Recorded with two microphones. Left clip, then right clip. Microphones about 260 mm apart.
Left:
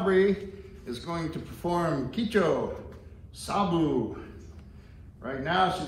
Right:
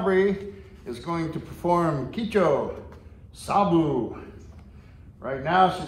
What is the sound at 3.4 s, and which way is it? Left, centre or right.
Speech, right.